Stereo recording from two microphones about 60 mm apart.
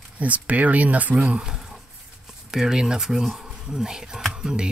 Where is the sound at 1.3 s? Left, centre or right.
Centre.